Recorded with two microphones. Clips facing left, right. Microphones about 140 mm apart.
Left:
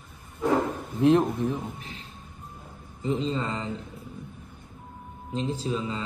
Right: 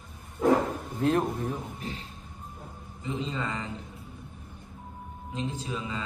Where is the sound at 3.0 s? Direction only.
30° left (ahead or behind).